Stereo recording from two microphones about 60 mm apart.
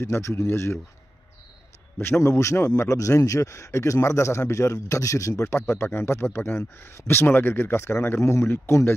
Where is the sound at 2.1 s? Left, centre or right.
Left.